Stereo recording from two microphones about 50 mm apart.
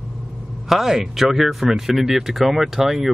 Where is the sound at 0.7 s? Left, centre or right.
Centre.